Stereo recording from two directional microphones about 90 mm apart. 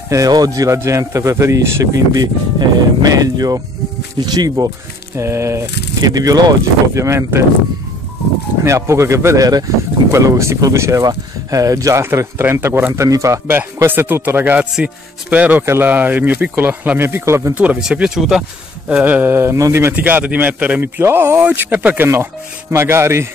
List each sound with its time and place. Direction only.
0.1 s speech: 45° right (ahead or behind)
2.1 s speech: 45° right (ahead or behind)
5.1 s speech: 30° right (ahead or behind)
6.9 s speech: 35° right (ahead or behind)
8.6 s speech: 35° right (ahead or behind)
13.5 s speech: 25° right (ahead or behind)
15.6 s speech: 30° right (ahead or behind)
15.9 s speech: 20° right (ahead or behind)
17.6 s speech: 10° right (ahead or behind); by 19.9 s 35° right (ahead or behind)
19.9 s speech: 20° right (ahead or behind)
20.8 s speech: 25° right (ahead or behind)